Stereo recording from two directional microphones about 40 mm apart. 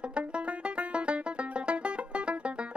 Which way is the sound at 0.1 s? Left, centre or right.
Right.